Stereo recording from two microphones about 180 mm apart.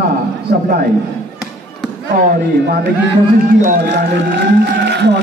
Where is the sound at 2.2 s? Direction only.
60° right (ahead or behind).